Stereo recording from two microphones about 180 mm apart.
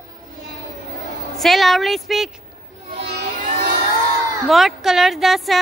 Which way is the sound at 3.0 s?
65° right (ahead or behind).